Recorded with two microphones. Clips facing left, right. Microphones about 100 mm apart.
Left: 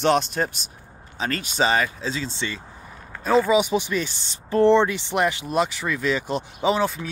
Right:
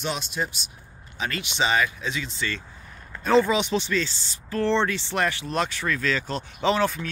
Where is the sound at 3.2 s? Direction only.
5° left (ahead or behind).